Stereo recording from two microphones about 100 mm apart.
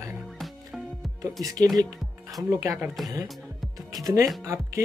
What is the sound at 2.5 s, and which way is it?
Speech, 35° right (ahead or behind).